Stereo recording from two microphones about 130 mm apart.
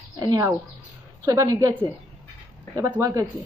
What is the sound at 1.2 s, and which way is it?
Speech, 20° right (ahead or behind).